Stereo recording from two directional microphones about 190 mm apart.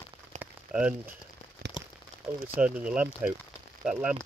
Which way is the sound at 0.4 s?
5° right (ahead or behind).